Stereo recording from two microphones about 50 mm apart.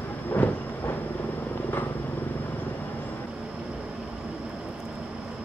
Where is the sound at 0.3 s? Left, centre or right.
Left.